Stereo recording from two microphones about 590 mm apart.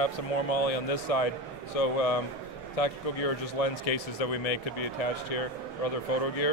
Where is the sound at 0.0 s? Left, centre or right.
Left.